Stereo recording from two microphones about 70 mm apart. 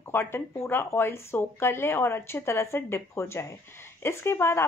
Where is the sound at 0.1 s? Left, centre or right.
Left.